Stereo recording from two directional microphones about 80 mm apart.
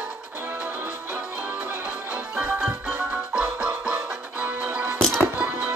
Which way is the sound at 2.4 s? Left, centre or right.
Right.